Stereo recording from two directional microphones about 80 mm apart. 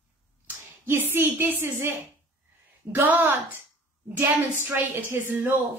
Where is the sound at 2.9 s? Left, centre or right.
Centre.